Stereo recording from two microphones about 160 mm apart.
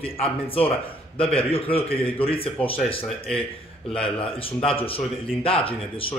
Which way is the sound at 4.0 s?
35° left (ahead or behind).